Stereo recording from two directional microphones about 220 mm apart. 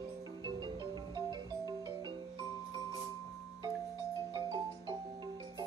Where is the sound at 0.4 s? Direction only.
20° right (ahead or behind).